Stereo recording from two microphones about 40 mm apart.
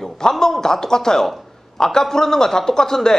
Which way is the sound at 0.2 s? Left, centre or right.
Centre.